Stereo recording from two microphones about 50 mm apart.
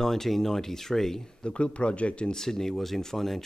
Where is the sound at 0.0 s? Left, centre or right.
Centre.